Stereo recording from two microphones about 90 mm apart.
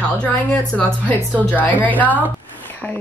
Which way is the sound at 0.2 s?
15° left (ahead or behind).